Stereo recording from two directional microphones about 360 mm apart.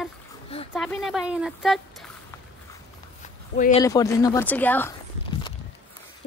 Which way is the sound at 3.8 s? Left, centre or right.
Centre.